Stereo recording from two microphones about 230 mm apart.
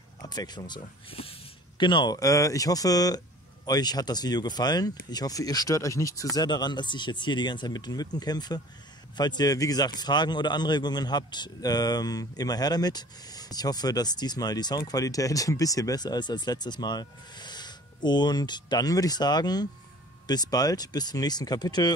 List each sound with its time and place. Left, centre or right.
0.3 s a man's voice: centre